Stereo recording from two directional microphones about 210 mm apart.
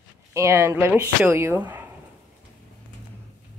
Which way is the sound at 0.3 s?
10° right (ahead or behind).